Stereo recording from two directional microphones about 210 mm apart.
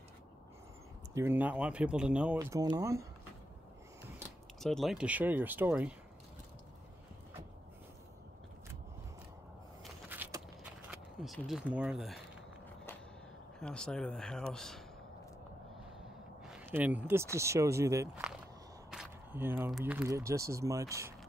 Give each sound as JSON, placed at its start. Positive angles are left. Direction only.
{"t": 1.1, "sound": "speech", "side_deg": -10}
{"t": 2.3, "sound": "speech", "side_deg": -15}
{"t": 4.6, "sound": "speech", "side_deg": 0}
{"t": 10.0, "sound": "walk", "side_deg": -10}
{"t": 10.9, "sound": "speech", "side_deg": 0}
{"t": 13.6, "sound": "speech", "side_deg": 5}
{"t": 16.4, "sound": "speech", "side_deg": -5}